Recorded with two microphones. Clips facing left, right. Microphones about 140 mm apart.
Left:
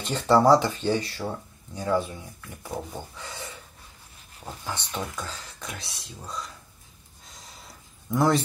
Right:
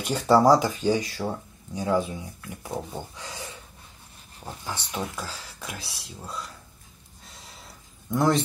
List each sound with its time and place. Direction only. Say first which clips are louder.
0.0 s speech: right 1 dB; 10° right (ahead or behind)
4.6 s speech: right 1 dB; 10° right (ahead or behind)
7.2 s a sound: even; centre (ahead or behind)